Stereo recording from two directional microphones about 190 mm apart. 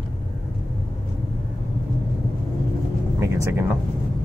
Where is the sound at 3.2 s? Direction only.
15° right (ahead or behind).